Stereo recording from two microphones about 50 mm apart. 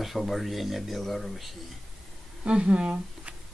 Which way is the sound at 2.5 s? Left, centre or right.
Right.